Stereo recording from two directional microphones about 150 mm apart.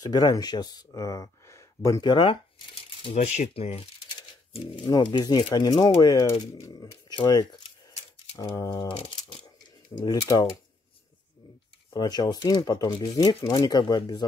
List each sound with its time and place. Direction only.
0.0 s speech: 25° left (ahead or behind); by 3.8 s 45° left (ahead or behind)
4.8 s speech: 30° left (ahead or behind)
7.1 s a sound: 25° left (ahead or behind)
8.4 s speech: 20° left (ahead or behind)
8.8 s speech: 35° left (ahead or behind)
11.9 s speech: 25° left (ahead or behind)